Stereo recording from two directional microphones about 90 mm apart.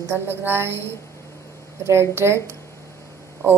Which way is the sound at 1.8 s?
30° right (ahead or behind).